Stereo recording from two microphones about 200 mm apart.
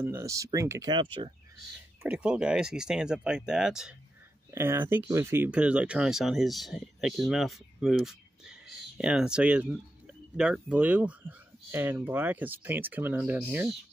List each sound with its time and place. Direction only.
0.0 s speech: 15° right (ahead or behind)
2.0 s speech: 5° right (ahead or behind)